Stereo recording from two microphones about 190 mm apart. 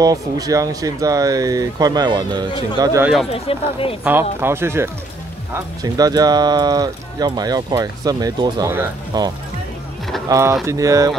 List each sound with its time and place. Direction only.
0.0 s speech: 20° right (ahead or behind)
3.3 s speech: 30° left (ahead or behind)
4.0 s speech: 10° right (ahead or behind)